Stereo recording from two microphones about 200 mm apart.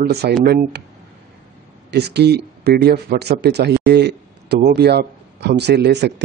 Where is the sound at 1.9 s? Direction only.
55° right (ahead or behind).